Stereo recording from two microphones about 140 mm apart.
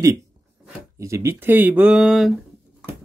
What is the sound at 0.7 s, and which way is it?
Speech, 20° right (ahead or behind).